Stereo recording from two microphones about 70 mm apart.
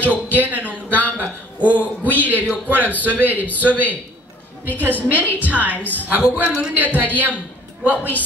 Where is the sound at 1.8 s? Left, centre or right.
Left.